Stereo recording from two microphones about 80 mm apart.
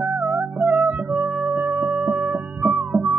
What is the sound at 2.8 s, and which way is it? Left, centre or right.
Music, right.